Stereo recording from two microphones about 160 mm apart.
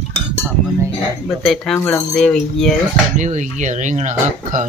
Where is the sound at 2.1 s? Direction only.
5° left (ahead or behind).